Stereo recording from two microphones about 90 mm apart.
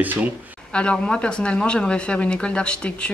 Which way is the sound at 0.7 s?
10° left (ahead or behind).